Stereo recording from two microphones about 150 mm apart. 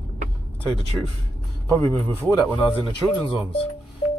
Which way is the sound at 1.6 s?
15° left (ahead or behind).